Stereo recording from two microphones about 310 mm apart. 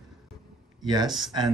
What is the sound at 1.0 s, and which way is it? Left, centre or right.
Speech, centre.